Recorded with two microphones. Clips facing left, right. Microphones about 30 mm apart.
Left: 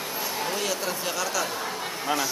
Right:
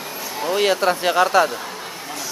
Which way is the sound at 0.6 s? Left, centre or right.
Right.